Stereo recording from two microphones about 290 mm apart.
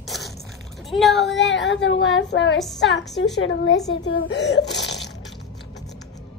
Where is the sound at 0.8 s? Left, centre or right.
Centre.